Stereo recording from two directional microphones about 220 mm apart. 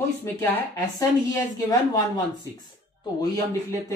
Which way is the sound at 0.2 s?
10° left (ahead or behind).